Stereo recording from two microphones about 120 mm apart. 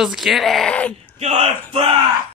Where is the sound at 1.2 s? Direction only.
65° right (ahead or behind).